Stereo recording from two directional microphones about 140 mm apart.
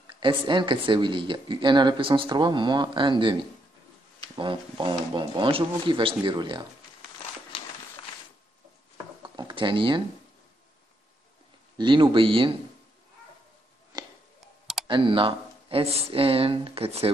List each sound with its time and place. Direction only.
0.0 s speech: 35° right (ahead or behind)
4.4 s speech: 35° right (ahead or behind)
9.2 s a sound: 30° right (ahead or behind)
11.8 s speech: 35° right (ahead or behind)
13.9 s music: 30° right (ahead or behind)
14.9 s speech: 35° right (ahead or behind)